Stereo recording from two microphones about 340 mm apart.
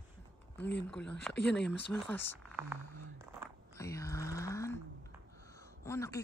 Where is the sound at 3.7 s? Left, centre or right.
Centre.